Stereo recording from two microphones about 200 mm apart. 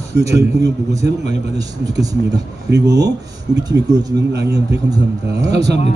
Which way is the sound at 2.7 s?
55° right (ahead or behind).